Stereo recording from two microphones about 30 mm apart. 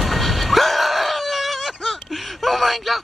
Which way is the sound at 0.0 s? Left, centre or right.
Centre.